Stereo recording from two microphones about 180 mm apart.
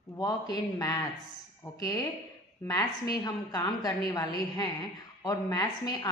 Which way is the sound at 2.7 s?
20° left (ahead or behind).